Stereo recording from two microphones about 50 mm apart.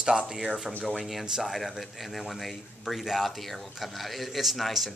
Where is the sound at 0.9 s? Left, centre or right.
Centre.